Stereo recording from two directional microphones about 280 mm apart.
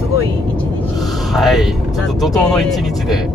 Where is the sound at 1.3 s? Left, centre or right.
Centre.